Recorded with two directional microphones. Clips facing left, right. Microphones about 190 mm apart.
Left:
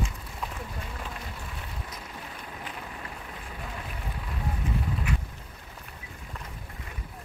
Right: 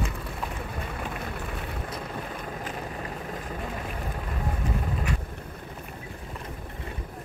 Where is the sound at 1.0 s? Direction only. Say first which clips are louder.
Right 6 dB; 55° right (ahead or behind).